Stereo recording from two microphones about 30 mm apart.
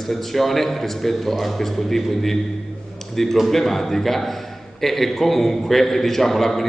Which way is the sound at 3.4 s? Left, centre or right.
Centre.